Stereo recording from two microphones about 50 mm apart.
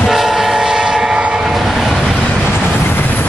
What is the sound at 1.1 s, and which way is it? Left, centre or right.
Train, right.